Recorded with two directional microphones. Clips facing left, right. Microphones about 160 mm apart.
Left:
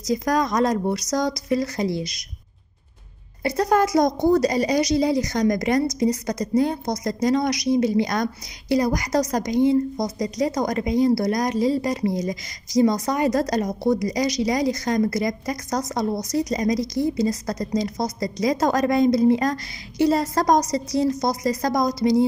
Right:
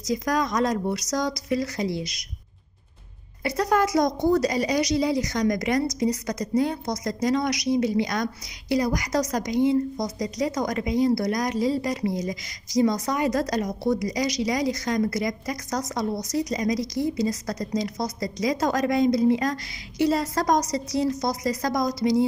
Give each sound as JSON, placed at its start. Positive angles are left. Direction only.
{"t": 0.1, "sound": "a woman's voice", "side_deg": 40}
{"t": 3.4, "sound": "a woman's voice", "side_deg": 35}